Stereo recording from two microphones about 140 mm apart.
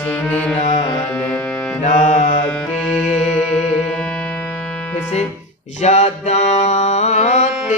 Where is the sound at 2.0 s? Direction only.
50° left (ahead or behind).